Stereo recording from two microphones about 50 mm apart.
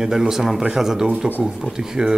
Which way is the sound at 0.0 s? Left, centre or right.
Centre.